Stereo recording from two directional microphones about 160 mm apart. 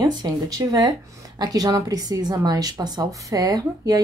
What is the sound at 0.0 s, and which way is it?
Speech, 25° right (ahead or behind).